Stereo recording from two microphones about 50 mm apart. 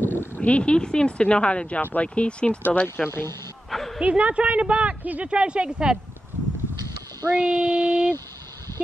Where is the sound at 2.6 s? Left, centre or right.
Left.